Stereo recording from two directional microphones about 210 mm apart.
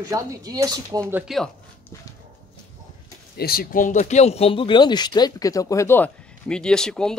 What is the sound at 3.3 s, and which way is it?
Speech, 45° left (ahead or behind).